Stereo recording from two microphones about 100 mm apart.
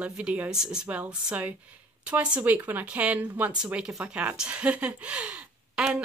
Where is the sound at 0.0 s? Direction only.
15° right (ahead or behind).